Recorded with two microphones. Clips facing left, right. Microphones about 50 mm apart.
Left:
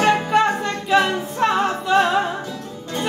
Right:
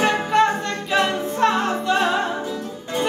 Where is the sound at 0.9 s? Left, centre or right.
Centre.